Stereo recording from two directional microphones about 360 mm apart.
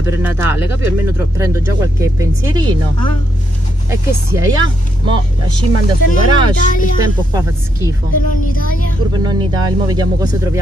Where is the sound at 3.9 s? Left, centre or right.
Centre.